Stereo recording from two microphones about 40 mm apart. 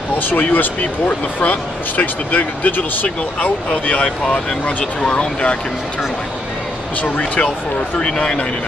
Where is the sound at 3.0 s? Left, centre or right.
Left.